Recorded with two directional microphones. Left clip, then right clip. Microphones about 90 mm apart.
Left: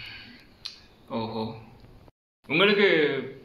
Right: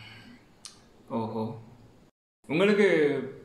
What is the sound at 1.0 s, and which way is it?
Speech, 40° right (ahead or behind).